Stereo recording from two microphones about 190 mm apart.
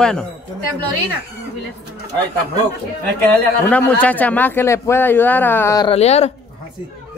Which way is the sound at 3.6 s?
10° left (ahead or behind).